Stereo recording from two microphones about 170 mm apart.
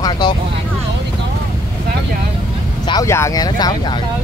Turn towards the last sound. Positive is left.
turn(degrees=25)  # may be behind; listen again after turning